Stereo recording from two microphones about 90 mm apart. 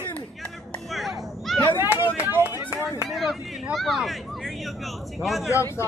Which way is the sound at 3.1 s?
Centre (ahead or behind).